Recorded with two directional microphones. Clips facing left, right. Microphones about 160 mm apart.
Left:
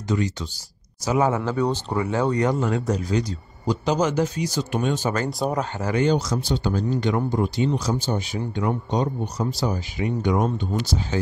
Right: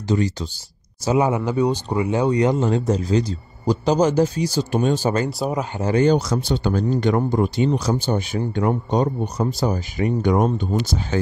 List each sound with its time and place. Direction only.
0.1 s speech: 35° right (ahead or behind)
1.0 s speech: 15° right (ahead or behind); by 5.1 s 35° right (ahead or behind)
5.4 s speech: 10° right (ahead or behind)
5.8 s speech: 30° right (ahead or behind)
6.0 s speech: 60° right (ahead or behind)